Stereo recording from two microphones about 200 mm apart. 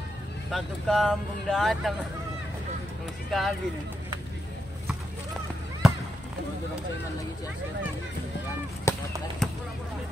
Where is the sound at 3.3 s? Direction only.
Centre (ahead or behind).